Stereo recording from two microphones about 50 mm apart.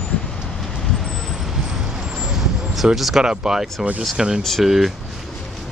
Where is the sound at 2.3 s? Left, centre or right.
Centre.